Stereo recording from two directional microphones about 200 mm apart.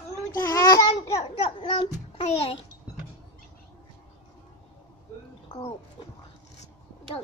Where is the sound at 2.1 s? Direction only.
30° left (ahead or behind).